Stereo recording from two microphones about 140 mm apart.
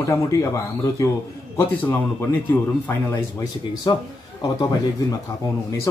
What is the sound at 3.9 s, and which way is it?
Speech, 35° left (ahead or behind).